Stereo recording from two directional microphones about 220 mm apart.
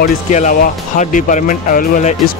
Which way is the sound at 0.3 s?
35° left (ahead or behind).